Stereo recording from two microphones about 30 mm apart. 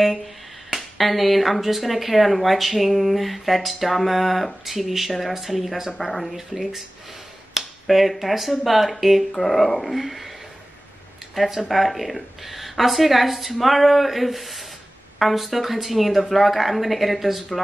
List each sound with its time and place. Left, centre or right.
0.7 s speech: centre
11.3 s speech: centre